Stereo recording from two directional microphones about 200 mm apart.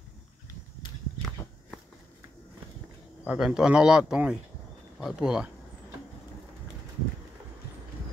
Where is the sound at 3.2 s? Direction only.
5° right (ahead or behind).